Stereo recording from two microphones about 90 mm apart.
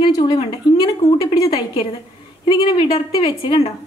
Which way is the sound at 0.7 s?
45° left (ahead or behind).